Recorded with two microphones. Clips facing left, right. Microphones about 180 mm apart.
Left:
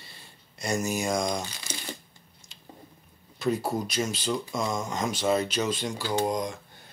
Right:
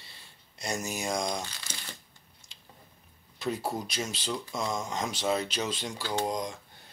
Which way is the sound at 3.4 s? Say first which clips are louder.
Left 5 dB; 45° left (ahead or behind).